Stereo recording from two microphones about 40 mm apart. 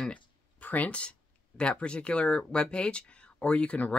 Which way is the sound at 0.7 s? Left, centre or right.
Left.